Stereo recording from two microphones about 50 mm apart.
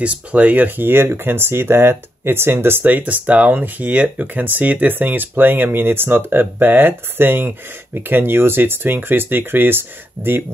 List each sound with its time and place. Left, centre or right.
0.0 s speech: right
2.8 s speech: right